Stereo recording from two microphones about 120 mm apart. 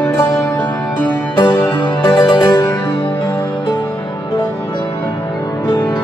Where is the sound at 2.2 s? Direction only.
40° left (ahead or behind).